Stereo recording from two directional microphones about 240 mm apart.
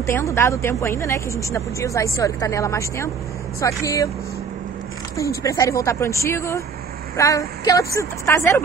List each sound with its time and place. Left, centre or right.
0.0 s speech: centre
5.1 s speech: centre